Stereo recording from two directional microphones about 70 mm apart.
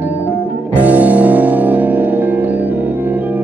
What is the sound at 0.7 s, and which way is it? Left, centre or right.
Music, right.